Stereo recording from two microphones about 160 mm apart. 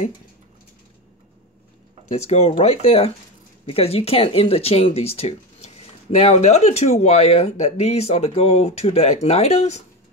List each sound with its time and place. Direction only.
2.0 s speech: 45° left (ahead or behind)